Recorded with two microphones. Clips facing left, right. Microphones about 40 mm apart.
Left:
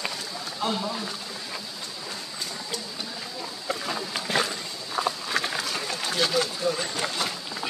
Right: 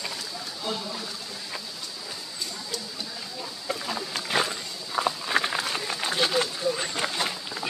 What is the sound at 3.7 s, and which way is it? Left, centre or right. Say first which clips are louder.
Boat: left 1 dB; centre.